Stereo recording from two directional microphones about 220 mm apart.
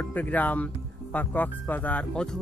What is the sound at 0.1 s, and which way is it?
Speech, 5° left (ahead or behind).